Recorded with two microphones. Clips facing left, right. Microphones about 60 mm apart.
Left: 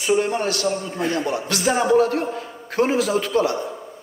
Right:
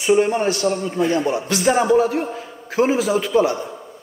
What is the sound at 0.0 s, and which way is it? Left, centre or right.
Speech, centre.